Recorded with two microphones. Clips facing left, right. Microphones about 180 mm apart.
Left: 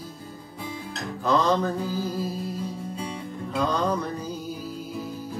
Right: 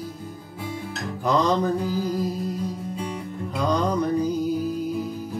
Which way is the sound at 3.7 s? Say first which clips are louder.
Right 7 dB; 15° right (ahead or behind).